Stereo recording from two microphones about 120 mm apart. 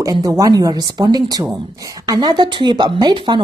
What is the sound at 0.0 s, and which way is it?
Speech, 35° right (ahead or behind).